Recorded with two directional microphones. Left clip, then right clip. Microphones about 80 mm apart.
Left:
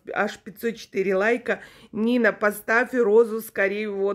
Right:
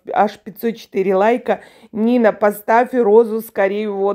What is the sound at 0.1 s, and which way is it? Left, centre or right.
A woman's voice, right.